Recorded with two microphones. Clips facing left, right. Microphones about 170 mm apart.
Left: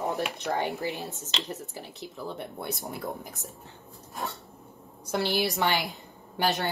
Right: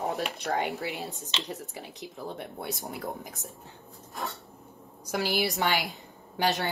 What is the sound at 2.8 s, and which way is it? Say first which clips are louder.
Speech: left 1 dB; 20° right (ahead or behind).